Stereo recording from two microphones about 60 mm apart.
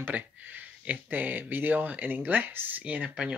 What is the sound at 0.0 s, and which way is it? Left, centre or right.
Speech, right.